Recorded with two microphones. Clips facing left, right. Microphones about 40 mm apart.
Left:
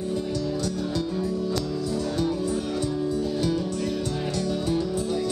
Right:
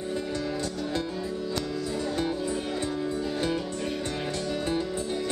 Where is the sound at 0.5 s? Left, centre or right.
Right.